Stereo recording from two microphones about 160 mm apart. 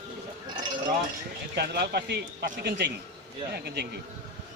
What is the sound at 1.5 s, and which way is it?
Speech, 90° right.